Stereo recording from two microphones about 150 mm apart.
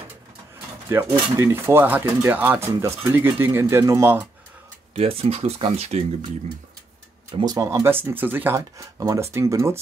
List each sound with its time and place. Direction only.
0.8 s speech: 15° right (ahead or behind)
4.9 s speech: 40° right (ahead or behind)
7.3 s speech: 25° right (ahead or behind)